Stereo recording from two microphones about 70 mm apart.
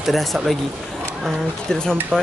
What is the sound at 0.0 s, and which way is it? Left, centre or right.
Speech, centre.